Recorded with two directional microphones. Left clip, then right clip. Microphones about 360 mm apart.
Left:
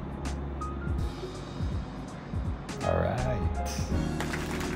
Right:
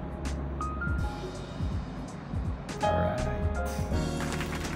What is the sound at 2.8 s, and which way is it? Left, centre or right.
Music, centre.